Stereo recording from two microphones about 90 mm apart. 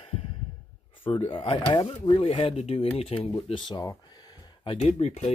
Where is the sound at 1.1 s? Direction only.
80° left.